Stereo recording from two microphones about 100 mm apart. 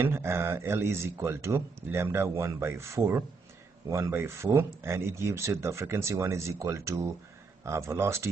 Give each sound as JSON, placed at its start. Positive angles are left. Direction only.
{"t": 0.0, "sound": "speech", "side_deg": -25}